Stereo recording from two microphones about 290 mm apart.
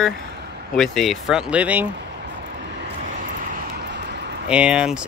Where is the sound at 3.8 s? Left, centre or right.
Right.